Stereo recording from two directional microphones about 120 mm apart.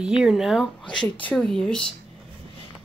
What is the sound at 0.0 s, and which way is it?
Speech, 5° right (ahead or behind).